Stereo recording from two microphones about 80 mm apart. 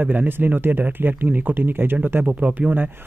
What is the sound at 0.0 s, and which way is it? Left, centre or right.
Speech, right.